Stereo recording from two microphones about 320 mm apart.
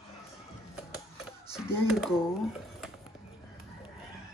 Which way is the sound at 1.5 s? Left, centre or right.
Centre.